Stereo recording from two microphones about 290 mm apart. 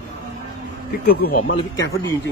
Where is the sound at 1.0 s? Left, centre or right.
Left.